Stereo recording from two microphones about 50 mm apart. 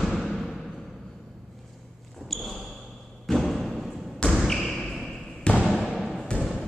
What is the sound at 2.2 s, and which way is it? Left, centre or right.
Basketball bounce, centre.